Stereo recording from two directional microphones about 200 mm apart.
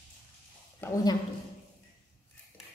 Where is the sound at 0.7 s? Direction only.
10° left (ahead or behind).